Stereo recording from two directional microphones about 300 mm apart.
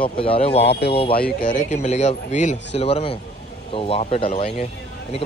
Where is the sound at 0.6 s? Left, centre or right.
Left.